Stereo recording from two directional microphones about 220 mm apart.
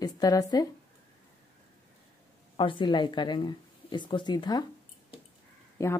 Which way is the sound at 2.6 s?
20° left (ahead or behind).